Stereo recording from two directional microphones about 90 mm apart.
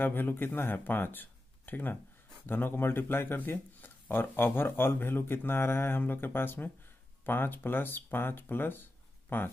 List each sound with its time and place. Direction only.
0.0 s speech: 20° left (ahead or behind)